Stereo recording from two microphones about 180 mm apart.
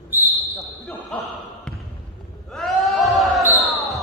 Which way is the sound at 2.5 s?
Centre (ahead or behind).